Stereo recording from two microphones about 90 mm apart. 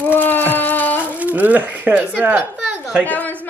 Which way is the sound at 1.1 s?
20° right (ahead or behind).